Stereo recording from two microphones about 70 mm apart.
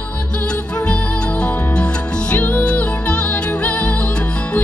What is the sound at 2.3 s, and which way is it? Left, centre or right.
Music, left.